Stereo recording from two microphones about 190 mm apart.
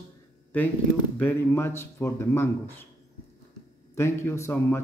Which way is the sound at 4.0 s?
15° left (ahead or behind).